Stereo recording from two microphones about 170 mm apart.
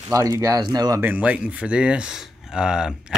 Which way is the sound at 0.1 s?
20° right (ahead or behind).